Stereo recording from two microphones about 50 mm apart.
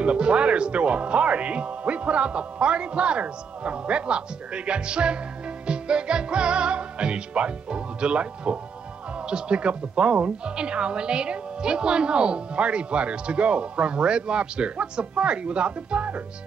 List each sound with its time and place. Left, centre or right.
0.0 s a woman's voice: right